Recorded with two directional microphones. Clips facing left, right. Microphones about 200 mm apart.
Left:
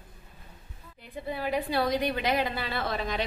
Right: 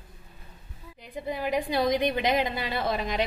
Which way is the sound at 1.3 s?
15° right (ahead or behind).